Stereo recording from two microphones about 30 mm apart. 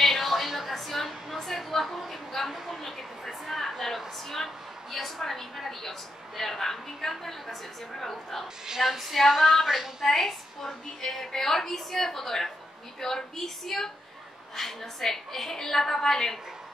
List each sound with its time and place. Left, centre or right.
0.0 s a sound: centre
4.9 s a woman's voice: centre
8.6 s female singing: centre
9.7 s a woman's voice: centre
10.0 s a woman's voice: centre